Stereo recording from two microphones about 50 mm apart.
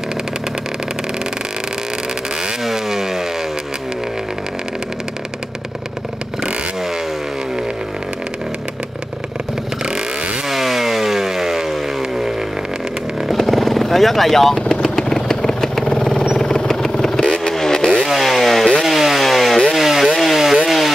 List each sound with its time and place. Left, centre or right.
2.6 s chainsaw: centre
9.8 s vehicle: centre
10.5 s vehicle: centre
13.3 s vehicle: centre
18.0 s chainsaw: centre
19.7 s vehicle: centre
20.6 s chainsaw: centre